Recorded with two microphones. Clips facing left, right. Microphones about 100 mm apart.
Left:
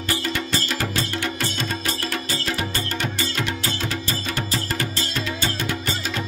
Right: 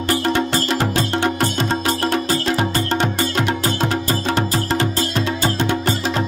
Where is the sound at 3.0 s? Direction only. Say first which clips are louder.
Right 7 dB; 65° right (ahead or behind); by 4.2 s 50° right (ahead or behind).